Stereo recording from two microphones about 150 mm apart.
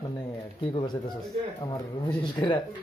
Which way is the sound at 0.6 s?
30° left (ahead or behind).